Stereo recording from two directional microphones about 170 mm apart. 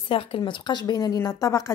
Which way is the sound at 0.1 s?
30° left (ahead or behind).